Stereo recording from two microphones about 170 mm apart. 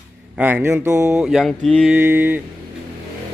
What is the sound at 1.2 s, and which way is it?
Speech, centre (ahead or behind).